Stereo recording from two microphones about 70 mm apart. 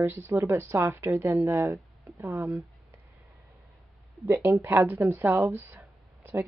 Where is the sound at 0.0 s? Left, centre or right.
Right.